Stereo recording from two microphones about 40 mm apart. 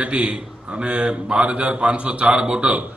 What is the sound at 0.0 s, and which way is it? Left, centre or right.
A man's voice, right.